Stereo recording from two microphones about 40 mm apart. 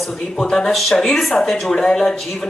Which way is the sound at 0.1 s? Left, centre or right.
Centre.